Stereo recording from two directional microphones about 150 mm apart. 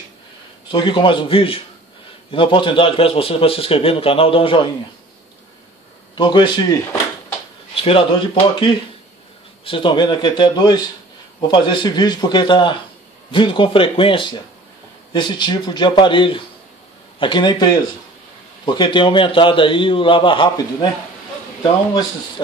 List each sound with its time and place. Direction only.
0.7 s a man's voice: 30° left (ahead or behind)
6.1 s a man's voice: 30° left (ahead or behind)